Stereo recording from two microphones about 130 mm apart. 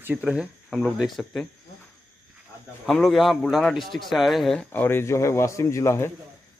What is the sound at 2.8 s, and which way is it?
A man's voice, centre (ahead or behind).